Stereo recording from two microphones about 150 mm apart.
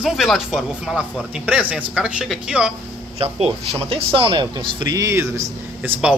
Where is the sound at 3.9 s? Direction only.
35° right (ahead or behind); by 6.1 s 15° right (ahead or behind).